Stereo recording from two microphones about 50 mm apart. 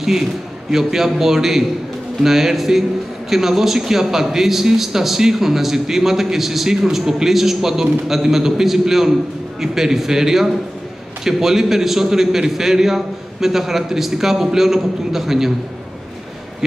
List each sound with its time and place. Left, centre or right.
0.7 s a man's voice: centre